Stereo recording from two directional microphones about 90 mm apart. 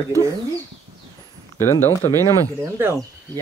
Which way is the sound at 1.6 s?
30° left (ahead or behind).